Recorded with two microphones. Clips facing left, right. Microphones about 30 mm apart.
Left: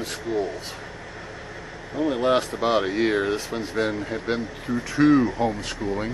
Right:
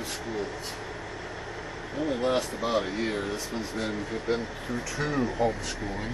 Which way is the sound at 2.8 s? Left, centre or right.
Left.